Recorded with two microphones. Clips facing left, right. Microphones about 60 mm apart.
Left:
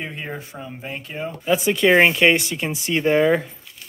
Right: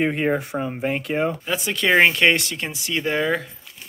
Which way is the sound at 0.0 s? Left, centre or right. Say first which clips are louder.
Right 10 dB; right.